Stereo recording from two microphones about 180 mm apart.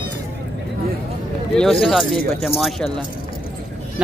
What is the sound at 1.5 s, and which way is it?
Speech, centre (ahead or behind).